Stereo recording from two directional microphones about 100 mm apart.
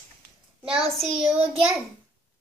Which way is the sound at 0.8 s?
70° right (ahead or behind).